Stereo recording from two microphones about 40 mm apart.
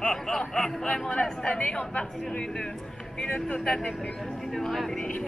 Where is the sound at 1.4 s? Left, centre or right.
Left.